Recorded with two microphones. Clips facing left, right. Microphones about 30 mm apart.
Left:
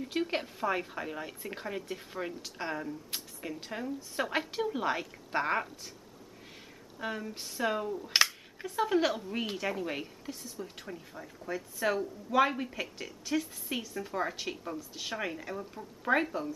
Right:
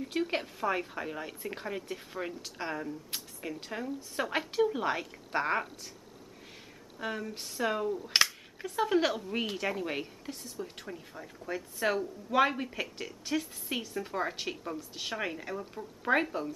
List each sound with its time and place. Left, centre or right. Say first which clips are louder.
0.0 s speech: even; centre
7.0 s a woman's voice: right 1 dB; centre